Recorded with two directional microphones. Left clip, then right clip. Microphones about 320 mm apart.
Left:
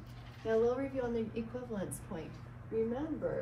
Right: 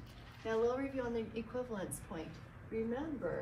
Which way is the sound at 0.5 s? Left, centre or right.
Centre.